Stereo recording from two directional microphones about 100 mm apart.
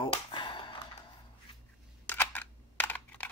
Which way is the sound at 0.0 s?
55° left (ahead or behind).